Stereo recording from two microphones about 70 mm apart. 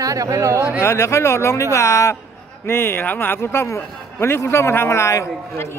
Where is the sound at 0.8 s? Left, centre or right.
Left.